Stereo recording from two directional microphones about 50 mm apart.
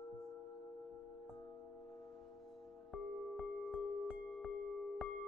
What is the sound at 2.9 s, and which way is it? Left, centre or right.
Music, centre.